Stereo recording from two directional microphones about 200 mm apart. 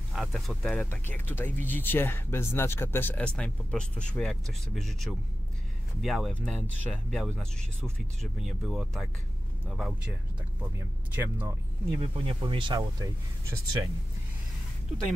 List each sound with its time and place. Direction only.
0.1 s speech: centre (ahead or behind)
11.1 s speech: 10° right (ahead or behind)
12.0 s speech: 25° right (ahead or behind)